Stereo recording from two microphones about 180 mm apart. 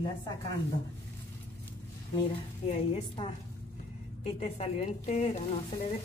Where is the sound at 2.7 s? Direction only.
35° left (ahead or behind).